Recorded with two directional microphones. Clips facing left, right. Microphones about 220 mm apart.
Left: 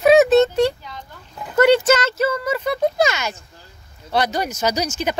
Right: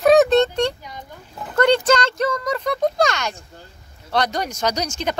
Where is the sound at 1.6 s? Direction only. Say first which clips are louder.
Left 2 dB; 5° left (ahead or behind).